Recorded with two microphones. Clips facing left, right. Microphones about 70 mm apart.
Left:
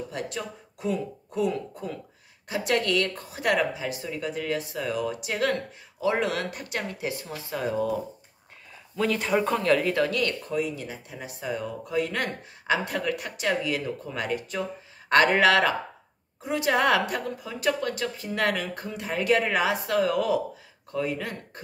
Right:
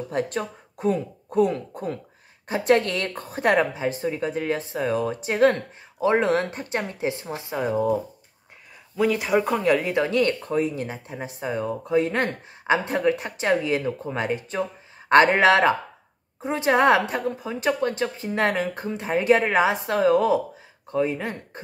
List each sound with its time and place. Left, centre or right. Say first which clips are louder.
0.1 s a woman's voice: right 7 dB; right
8.9 s speech: right 4 dB; centre; by 21.4 s right